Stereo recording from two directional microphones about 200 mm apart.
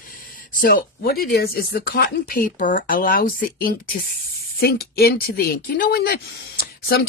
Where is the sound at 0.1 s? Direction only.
45° left (ahead or behind).